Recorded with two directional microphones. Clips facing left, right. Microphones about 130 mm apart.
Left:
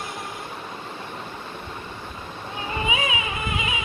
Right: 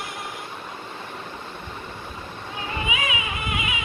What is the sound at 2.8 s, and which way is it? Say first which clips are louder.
Carnatic music: left 3 dB; 30° left (ahead or behind).